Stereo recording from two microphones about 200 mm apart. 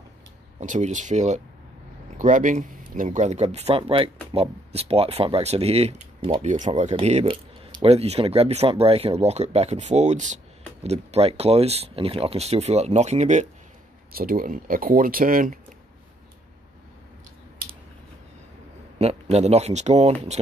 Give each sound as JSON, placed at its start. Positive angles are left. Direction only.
{"t": 0.6, "sound": "speech", "side_deg": -35}
{"t": 14.1, "sound": "speech", "side_deg": -45}
{"t": 18.9, "sound": "speech", "side_deg": -30}